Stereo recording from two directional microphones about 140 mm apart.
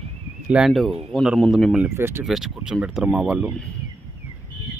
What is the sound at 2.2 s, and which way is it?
Speech, centre (ahead or behind).